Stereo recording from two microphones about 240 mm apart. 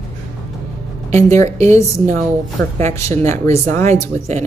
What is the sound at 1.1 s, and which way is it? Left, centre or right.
Speech, right.